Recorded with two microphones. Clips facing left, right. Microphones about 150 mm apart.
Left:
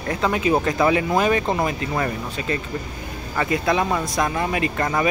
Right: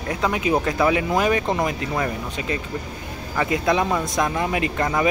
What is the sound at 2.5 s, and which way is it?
Speech, 15° right (ahead or behind).